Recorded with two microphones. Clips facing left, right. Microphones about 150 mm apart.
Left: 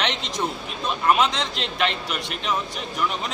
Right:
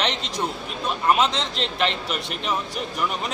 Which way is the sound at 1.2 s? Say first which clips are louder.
Even; 30° right (ahead or behind).